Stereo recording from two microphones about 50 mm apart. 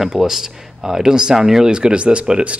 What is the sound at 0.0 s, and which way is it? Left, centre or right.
Speech, centre.